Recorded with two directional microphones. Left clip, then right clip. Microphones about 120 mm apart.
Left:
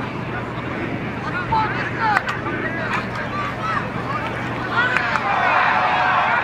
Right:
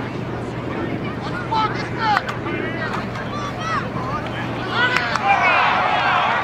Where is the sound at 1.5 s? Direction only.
15° right (ahead or behind).